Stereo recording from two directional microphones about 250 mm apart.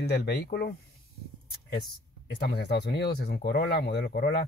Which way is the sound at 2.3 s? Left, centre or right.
Left.